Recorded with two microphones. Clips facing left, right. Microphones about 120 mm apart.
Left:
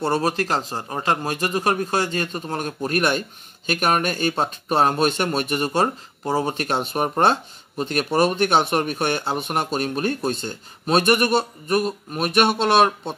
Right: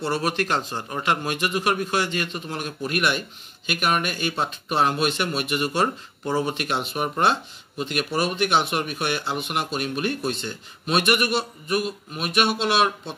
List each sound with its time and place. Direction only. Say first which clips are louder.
0.0 s speech: left 3 dB; 40° left (ahead or behind)